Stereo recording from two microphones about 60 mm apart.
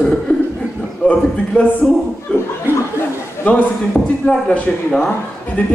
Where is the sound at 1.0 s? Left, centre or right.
Left.